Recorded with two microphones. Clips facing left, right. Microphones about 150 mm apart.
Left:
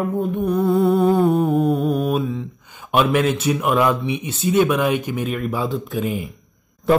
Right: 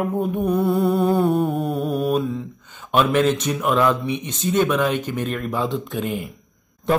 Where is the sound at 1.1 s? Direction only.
15° left (ahead or behind).